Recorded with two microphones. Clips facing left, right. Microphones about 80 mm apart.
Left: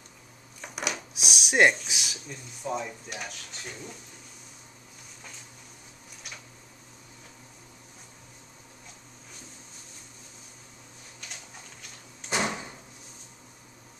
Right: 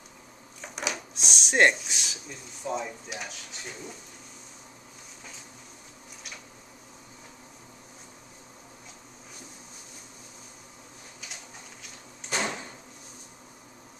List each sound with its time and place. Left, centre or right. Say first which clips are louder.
0.6 s a sound: even; centre
1.2 s speech: even; centre
12.3 s drawer open or close: left 2 dB; centre